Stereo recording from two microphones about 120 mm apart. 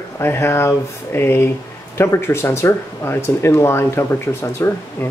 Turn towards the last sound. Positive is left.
turn(degrees=20)  # may be behind; listen again after turning